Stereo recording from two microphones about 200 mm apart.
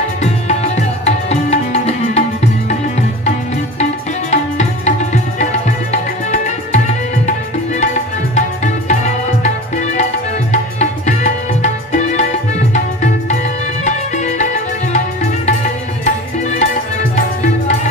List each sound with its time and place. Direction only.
0.2 s music: 35° left (ahead or behind)
4.3 s tabla: 35° left (ahead or behind)
10.5 s music: 35° left (ahead or behind)